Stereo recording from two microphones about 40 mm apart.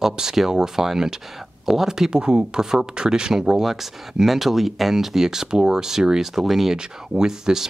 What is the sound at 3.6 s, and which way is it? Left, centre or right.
Speech, centre.